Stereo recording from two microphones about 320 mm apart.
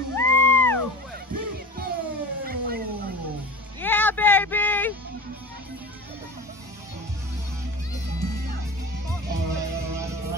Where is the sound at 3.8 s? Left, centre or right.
Centre.